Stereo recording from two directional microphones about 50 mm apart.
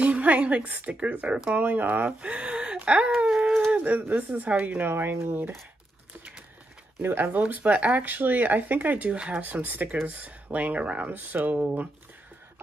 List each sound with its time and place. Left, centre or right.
0.0 s a woman's voice: right
2.0 s speech: right
3.2 s a sound: centre
3.7 s speech: right
4.9 s speech: right
7.0 s speech: right
9.4 s speech: right